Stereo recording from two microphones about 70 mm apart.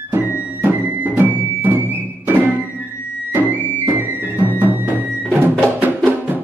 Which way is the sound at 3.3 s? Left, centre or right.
Right.